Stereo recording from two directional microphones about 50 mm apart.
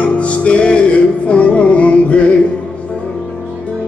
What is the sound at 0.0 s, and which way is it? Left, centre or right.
Music, left.